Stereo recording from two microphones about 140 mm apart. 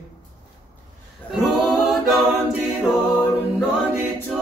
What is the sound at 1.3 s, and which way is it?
A capella, centre (ahead or behind).